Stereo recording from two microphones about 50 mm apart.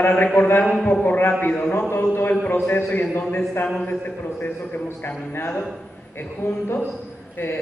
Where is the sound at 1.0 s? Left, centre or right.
Left.